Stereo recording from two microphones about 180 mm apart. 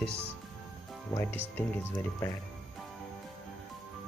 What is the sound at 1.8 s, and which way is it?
Speech, 15° left (ahead or behind).